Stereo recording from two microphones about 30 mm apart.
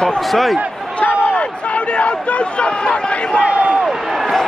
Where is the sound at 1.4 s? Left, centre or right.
Left.